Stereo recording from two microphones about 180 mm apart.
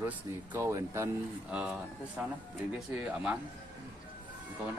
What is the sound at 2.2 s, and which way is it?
Speech, 10° right (ahead or behind).